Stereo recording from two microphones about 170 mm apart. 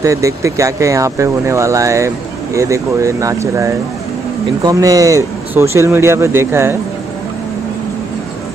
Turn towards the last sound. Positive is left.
turn(degrees=-15)  # may be behind; listen again after turning